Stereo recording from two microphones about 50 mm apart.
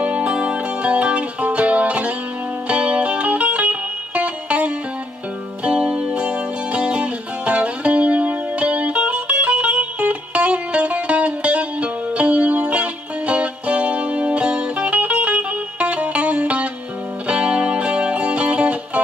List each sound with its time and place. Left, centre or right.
0.0 s music: right